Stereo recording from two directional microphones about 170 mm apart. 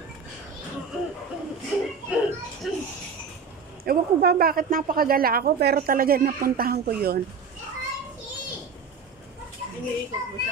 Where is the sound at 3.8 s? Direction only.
65° right (ahead or behind).